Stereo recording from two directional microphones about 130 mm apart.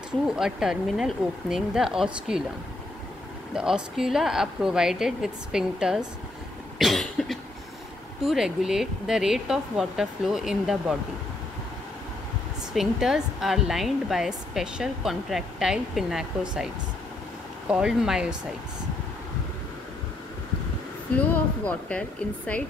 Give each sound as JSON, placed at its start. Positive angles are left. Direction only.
{"t": 0.4, "sound": "speech", "side_deg": -5}
{"t": 3.5, "sound": "speech", "side_deg": -5}
{"t": 6.8, "sound": "cough", "side_deg": 0}
{"t": 8.2, "sound": "speech", "side_deg": -5}
{"t": 12.7, "sound": "speech", "side_deg": -5}
{"t": 21.2, "sound": "speech", "side_deg": 10}